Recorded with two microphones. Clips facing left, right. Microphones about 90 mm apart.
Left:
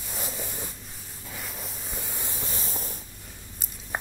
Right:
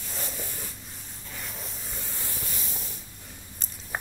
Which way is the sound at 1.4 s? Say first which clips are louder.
Left 1 dB; 5° left (ahead or behind).